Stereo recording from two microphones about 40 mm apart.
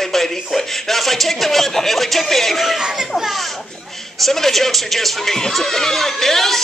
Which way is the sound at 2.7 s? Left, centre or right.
Centre.